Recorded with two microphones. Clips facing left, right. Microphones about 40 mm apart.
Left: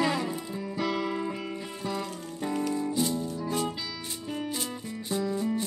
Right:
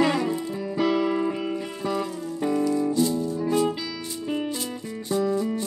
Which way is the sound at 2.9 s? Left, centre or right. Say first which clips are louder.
Right 6 dB; centre.